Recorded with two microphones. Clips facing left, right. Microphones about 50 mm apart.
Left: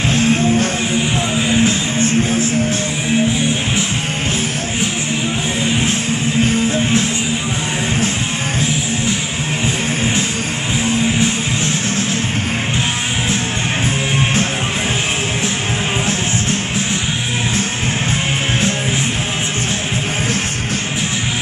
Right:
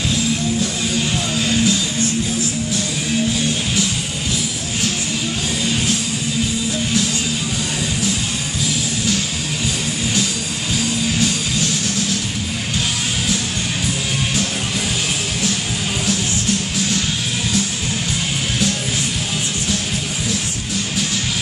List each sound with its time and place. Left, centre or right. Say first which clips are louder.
0.1 s music: left 7 dB; left
0.9 s music: left 2 dB; left
3.3 s music: left 3 dB; left
5.6 s music: left 3 dB; left
6.4 s music: left 6 dB; left
10.7 s music: left 4 dB; left